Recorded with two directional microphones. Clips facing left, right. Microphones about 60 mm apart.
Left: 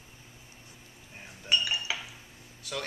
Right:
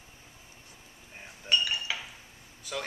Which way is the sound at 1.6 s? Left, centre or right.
Centre.